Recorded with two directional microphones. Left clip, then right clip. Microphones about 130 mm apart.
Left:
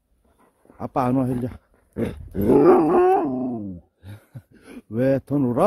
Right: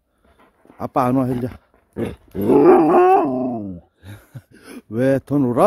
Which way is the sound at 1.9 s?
65° left (ahead or behind).